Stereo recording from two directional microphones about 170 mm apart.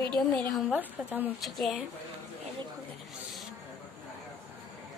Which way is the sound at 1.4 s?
Centre (ahead or behind).